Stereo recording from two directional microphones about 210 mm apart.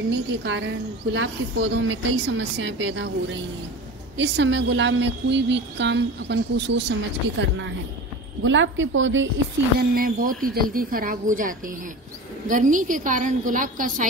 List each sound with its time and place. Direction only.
0.4 s speech: 60° right (ahead or behind)
4.2 s speech: 60° right (ahead or behind)
9.8 s a woman's voice: 45° right (ahead or behind)